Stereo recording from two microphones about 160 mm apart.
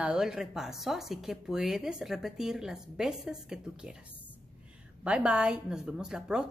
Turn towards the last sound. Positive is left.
turn(degrees=-5)  # may be behind; listen again after turning